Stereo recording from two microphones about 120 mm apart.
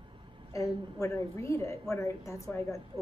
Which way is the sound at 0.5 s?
25° left (ahead or behind).